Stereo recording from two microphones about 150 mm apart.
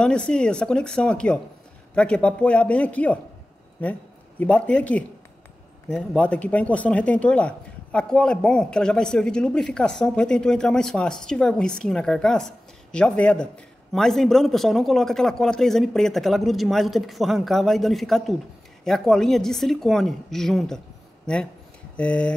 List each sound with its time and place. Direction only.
0.0 s speech: 5° left (ahead or behind)
21.9 s speech: 10° left (ahead or behind)